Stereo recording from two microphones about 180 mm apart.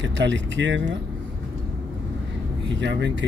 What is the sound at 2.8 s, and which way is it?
Speech, 75° right (ahead or behind).